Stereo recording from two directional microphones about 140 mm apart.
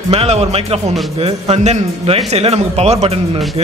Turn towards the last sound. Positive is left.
turn(degrees=-45)  # may be behind; listen again after turning